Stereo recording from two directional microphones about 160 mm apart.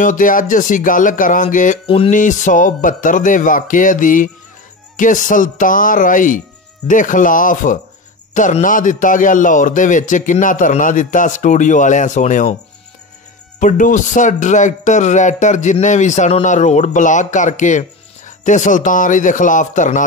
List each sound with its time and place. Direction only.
0.0 s speech: 55° left (ahead or behind)
1.9 s music: 35° left (ahead or behind)
2.1 s a man's voice: 55° left (ahead or behind)
13.6 s a man's voice: 55° left (ahead or behind)